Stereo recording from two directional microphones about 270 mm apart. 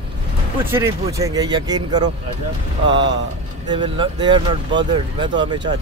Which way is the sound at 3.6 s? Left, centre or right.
Centre.